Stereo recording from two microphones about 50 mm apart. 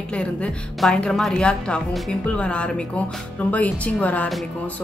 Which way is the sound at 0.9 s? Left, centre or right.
Centre.